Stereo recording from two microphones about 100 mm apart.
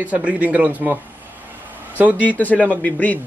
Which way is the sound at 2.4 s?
15° left (ahead or behind).